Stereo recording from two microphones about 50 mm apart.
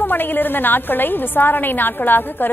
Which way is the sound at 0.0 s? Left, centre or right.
Left.